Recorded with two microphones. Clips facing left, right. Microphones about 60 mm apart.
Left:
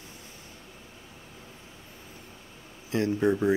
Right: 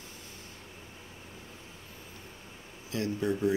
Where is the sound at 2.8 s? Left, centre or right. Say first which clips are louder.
Left 6 dB; left.